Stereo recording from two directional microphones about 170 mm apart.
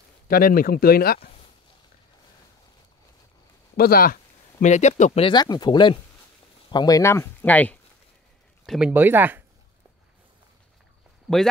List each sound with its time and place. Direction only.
0.3 s speech: 60° left (ahead or behind)
3.7 s speech: 60° left (ahead or behind); by 5.2 s 45° left (ahead or behind)
5.2 s speech: 25° left (ahead or behind); by 7.8 s 10° left (ahead or behind)
8.6 s speech: 5° right (ahead or behind)